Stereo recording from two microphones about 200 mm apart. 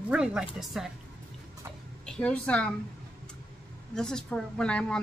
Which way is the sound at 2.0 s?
5° left (ahead or behind).